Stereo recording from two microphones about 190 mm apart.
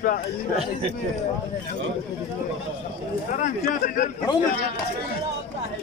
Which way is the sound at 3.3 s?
45° left (ahead or behind).